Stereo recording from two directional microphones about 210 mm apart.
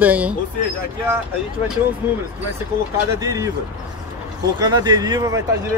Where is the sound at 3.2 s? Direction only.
15° right (ahead or behind).